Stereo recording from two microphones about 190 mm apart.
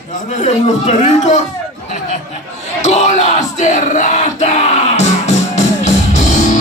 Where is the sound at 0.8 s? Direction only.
35° left (ahead or behind).